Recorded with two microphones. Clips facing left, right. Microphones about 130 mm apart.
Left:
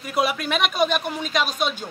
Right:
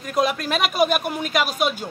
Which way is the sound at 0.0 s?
5° left (ahead or behind).